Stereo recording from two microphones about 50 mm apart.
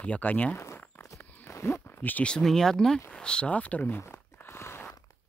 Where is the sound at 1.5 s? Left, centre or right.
Left.